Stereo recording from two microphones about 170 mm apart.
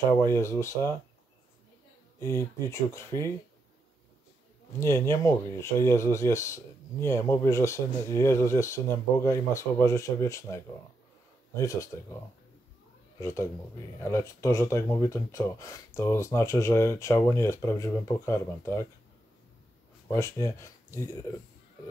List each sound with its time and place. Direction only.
0.2 s speech: 15° left (ahead or behind)
2.1 s speech: 15° left (ahead or behind)
4.7 s speech: 15° left (ahead or behind)
13.2 s speech: 15° left (ahead or behind)
20.2 s speech: 15° left (ahead or behind)